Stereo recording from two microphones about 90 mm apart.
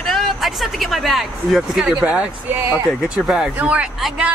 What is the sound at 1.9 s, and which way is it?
Speech, 15° right (ahead or behind).